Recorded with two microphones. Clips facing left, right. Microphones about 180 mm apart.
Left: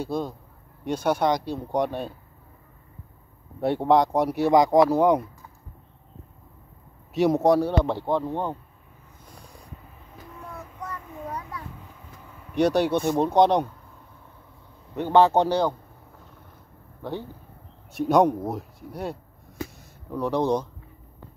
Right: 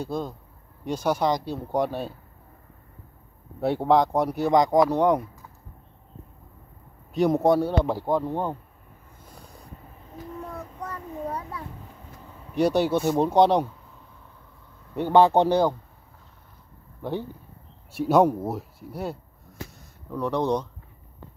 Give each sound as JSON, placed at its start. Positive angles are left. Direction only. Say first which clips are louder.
{"t": 0.0, "sound": "speech", "louder": "left 1 dB", "side_deg": 5}
{"t": 3.6, "sound": "speech", "louder": "left 1 dB", "side_deg": 0}
{"t": 7.2, "sound": "speech", "louder": "left 1 dB", "side_deg": 0}
{"t": 10.4, "sound": "a sound", "louder": "left 1 dB", "side_deg": -30}
{"t": 12.5, "sound": "speech", "louder": "even", "side_deg": -5}
{"t": 15.1, "sound": "speech", "louder": "right 1 dB", "side_deg": -15}
{"t": 17.9, "sound": "speech", "louder": "even", "side_deg": -5}